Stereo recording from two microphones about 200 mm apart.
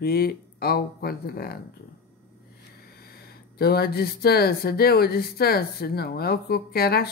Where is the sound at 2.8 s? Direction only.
50° left (ahead or behind).